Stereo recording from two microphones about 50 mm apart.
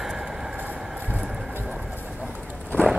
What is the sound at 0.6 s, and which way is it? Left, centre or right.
Vehicle, right.